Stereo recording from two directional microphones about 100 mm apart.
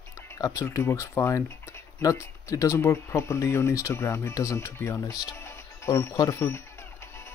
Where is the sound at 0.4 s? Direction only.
30° left (ahead or behind).